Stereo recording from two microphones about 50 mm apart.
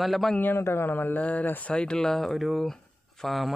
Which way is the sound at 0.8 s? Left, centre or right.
Left.